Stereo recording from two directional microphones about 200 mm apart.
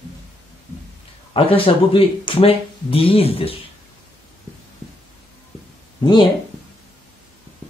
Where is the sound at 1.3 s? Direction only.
25° left (ahead or behind).